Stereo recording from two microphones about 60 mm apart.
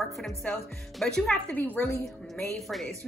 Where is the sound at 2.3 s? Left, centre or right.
Centre.